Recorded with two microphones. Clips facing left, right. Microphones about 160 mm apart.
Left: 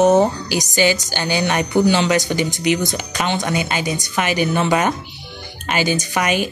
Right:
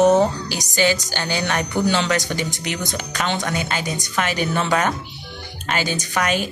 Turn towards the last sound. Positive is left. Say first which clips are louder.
# left 2 dB
turn(degrees=10)  # may be behind; listen again after turning